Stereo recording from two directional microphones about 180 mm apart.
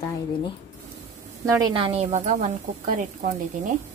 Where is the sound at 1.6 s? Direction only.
30° right (ahead or behind).